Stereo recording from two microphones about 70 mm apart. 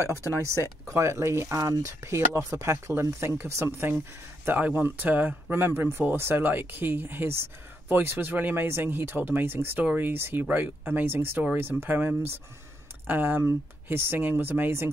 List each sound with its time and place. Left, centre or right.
0.0 s speech: right
4.6 s speech: right